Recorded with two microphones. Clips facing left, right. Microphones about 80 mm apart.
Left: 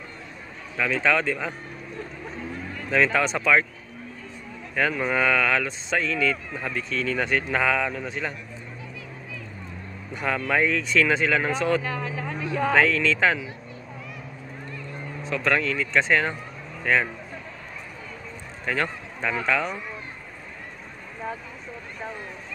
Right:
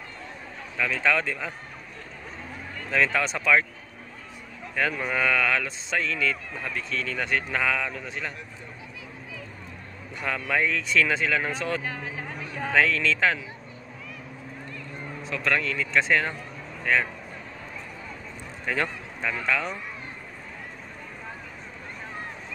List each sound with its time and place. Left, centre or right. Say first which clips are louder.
0.7 s speech: left 2 dB; centre
2.9 s speech: left 3 dB; centre
4.7 s speech: left 3 dB; centre
10.5 s speech: left 2 dB; centre
11.8 s speech: left 4 dB; left
12.8 s speech: left 2 dB; centre
15.2 s speech: left 3 dB; centre
18.7 s speech: left 1 dB; centre